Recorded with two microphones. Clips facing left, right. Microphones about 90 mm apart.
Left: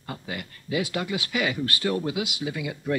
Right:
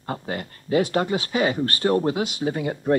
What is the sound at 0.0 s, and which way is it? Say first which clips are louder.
Speech: right 6 dB; 40° right (ahead or behind).